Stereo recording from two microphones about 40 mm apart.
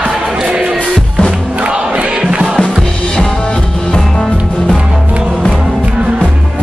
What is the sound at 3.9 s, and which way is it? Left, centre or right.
Music, centre.